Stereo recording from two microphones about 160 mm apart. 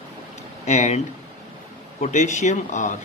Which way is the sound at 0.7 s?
45° left (ahead or behind).